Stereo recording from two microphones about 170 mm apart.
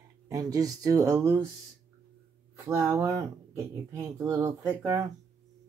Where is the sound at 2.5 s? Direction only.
15° right (ahead or behind).